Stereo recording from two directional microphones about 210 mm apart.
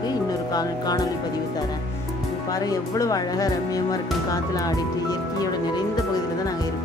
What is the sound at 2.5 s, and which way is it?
Speech, 15° left (ahead or behind).